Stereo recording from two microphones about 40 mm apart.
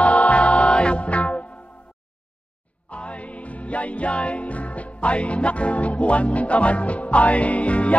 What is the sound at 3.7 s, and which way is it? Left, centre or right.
Music, left.